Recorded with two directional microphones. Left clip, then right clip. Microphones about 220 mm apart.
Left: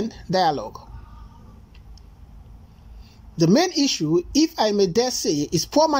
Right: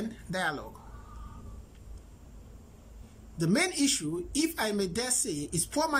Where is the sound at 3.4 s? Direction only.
10° left (ahead or behind).